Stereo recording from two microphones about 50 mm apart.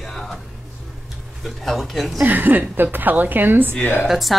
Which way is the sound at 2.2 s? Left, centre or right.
Right.